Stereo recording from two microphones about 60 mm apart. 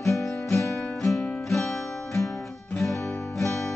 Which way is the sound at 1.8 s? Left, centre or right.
Left.